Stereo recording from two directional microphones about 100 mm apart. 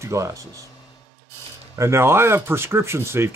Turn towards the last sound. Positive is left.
turn(degrees=-25)  # may be behind; listen again after turning